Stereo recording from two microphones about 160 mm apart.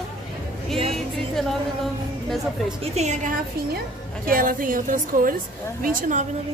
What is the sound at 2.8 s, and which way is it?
Speech, 45° right (ahead or behind).